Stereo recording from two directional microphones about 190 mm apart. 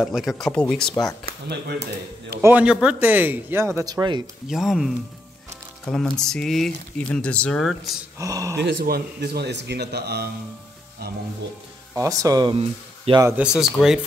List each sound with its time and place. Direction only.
0.0 s speech: centre (ahead or behind)
1.2 s speech: 60° right (ahead or behind)
2.4 s speech: 5° right (ahead or behind)
4.5 s speech: centre (ahead or behind)
8.2 s speech: 20° right (ahead or behind)
8.5 s speech: 60° right (ahead or behind)
11.9 s speech: 15° right (ahead or behind)
13.4 s speech: 5° right (ahead or behind)